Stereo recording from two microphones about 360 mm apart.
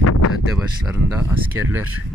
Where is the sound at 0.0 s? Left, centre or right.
Left.